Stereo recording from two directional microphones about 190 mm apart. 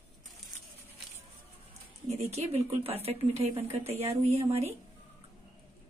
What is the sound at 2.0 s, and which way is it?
Speech, 35° right (ahead or behind).